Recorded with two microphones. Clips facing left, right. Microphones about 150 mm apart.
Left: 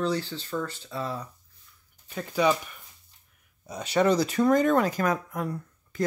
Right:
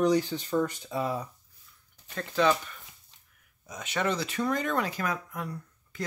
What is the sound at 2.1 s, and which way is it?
Speech, 10° left (ahead or behind).